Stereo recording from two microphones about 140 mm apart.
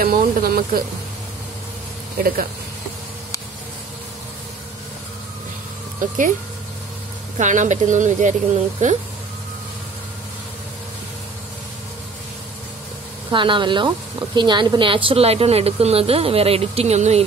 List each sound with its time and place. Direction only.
0.0 s speech: 90° right
2.1 s speech: 90° right
7.3 s speech: 60° right (ahead or behind)
13.3 s a woman's voice: 35° right (ahead or behind)